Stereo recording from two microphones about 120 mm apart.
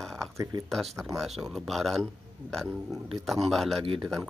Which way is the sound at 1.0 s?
Centre (ahead or behind).